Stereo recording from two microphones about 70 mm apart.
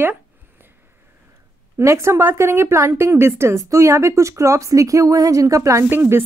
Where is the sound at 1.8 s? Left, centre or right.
Right.